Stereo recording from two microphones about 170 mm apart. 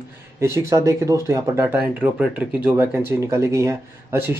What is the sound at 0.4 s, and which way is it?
Speech, 15° right (ahead or behind).